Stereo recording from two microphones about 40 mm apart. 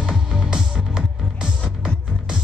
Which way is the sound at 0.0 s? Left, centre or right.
Centre.